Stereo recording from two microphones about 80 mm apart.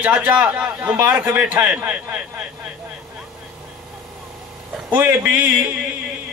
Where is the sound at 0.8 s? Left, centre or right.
Right.